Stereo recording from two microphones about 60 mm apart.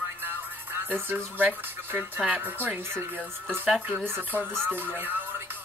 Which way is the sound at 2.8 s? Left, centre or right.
Right.